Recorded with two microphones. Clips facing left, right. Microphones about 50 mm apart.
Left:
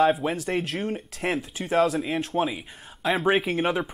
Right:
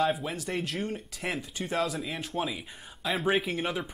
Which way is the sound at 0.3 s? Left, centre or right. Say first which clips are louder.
Left 6 dB; centre.